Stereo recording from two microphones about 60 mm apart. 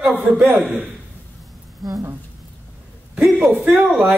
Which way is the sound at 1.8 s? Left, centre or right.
Right.